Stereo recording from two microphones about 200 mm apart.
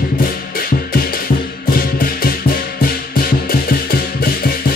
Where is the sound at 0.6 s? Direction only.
45° left (ahead or behind).